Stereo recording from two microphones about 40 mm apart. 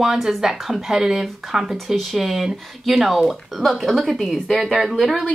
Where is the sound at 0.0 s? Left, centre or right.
Centre.